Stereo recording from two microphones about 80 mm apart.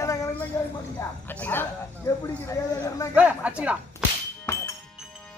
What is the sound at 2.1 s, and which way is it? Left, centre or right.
Speech, left.